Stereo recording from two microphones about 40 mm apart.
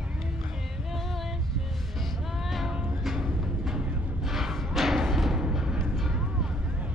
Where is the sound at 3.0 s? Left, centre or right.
Centre.